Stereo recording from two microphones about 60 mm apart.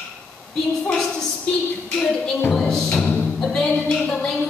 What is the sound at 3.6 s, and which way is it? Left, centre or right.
Music, centre.